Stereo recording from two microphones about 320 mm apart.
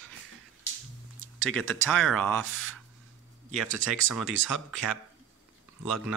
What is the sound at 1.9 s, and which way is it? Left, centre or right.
Speech, centre.